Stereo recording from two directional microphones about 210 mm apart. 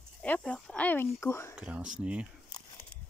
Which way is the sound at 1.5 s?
5° right (ahead or behind).